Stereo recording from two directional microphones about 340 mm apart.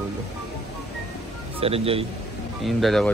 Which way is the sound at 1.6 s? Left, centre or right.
Centre.